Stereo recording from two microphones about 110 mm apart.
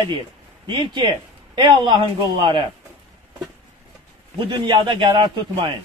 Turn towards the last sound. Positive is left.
turn(degrees=-45)  # may be behind; listen again after turning